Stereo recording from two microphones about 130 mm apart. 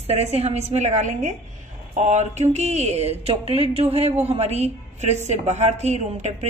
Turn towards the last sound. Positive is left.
turn(degrees=-60)  # may be behind; listen again after turning